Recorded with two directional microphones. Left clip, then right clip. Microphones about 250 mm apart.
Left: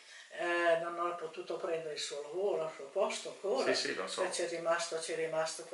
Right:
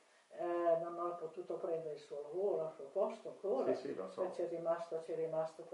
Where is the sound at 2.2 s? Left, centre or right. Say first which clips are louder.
Left 2 dB; right.